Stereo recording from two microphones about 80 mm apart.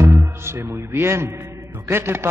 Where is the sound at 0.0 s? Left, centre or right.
Right.